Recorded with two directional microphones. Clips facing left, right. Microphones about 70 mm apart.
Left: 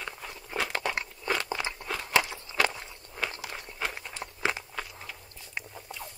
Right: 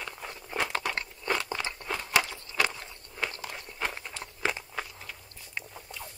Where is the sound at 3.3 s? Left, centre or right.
Centre.